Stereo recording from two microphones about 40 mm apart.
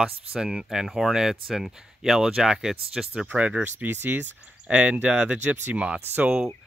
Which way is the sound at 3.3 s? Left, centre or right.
Right.